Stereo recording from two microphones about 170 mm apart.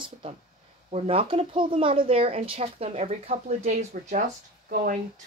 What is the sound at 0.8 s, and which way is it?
Speech, 35° right (ahead or behind).